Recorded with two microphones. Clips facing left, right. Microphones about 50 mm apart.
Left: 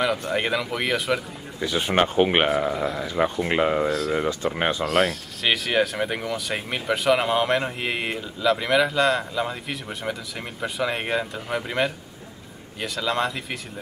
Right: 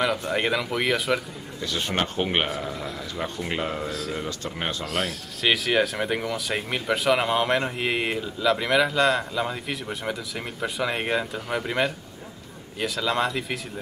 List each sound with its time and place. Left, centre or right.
0.0 s speech: centre
1.6 s speech: centre
4.8 s speech: centre